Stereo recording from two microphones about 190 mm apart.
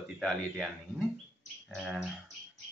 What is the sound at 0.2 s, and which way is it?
Speech, centre (ahead or behind).